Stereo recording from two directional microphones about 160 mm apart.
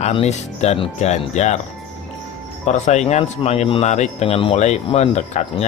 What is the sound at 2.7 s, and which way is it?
Speech, 45° left (ahead or behind).